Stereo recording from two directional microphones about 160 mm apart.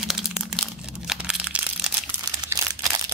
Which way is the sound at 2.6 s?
25° right (ahead or behind).